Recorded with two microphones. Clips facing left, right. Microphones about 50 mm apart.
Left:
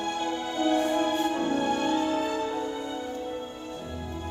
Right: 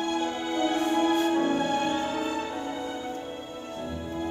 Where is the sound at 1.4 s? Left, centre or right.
Right.